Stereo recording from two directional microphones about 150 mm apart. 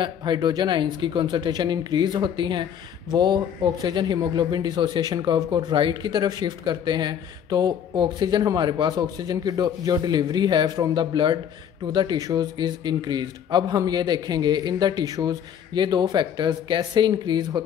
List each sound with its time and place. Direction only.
0.0 s speech: 30° right (ahead or behind)